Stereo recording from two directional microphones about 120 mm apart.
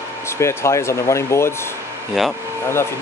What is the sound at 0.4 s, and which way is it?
Speech, 20° left (ahead or behind).